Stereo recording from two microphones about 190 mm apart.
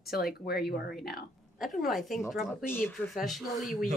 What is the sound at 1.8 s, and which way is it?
Speech, centre (ahead or behind).